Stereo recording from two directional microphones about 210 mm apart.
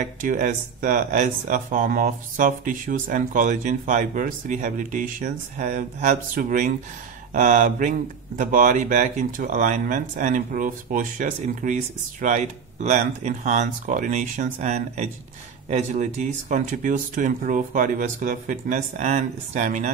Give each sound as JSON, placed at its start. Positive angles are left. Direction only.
{"t": 0.0, "sound": "speech", "side_deg": -35}